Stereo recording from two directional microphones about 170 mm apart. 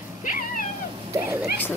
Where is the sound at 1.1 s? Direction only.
15° right (ahead or behind).